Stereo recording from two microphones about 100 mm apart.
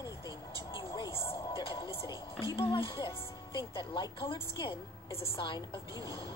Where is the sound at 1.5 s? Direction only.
60° left (ahead or behind).